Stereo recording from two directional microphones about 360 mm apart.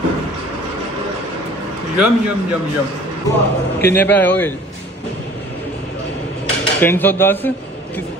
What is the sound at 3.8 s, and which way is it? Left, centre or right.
Speech, centre.